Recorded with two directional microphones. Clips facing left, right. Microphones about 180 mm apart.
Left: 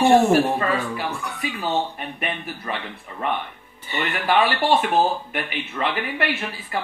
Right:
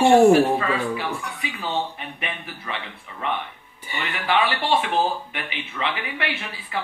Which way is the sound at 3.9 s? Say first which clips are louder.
Left 3 dB; 40° left (ahead or behind).